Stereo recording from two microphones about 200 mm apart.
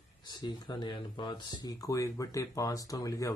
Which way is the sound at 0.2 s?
20° left (ahead or behind).